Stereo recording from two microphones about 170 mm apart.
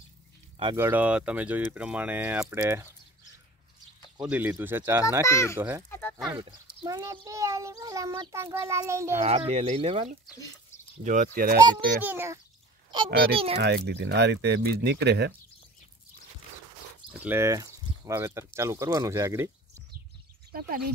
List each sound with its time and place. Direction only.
0.7 s a child's voice: 10° right (ahead or behind)
4.2 s a child's voice: 10° right (ahead or behind)
5.2 s a child's voice: 15° left (ahead or behind)
5.6 s a child's voice: 10° right (ahead or behind)
5.9 s a sound: 10° left (ahead or behind)
6.3 s a child's voice: 30° right (ahead or behind)
9.1 s a child's voice: 40° right (ahead or behind)
11.1 s speech: 50° right (ahead or behind)
12.0 s a child's voice: 10° right (ahead or behind)
12.9 s a child's voice: 30° right (ahead or behind)
13.6 s speech: 70° right (ahead or behind)
17.1 s speech: 10° right (ahead or behind)